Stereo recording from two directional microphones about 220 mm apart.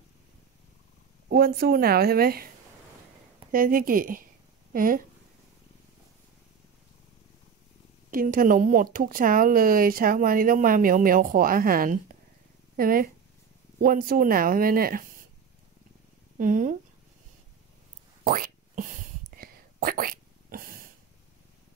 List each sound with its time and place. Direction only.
1.3 s a woman's voice: 45° right (ahead or behind)
3.5 s speech: 40° right (ahead or behind)
8.1 s speech: 40° right (ahead or behind)
16.3 s speech: 35° right (ahead or behind)
18.2 s a sound: 40° right (ahead or behind)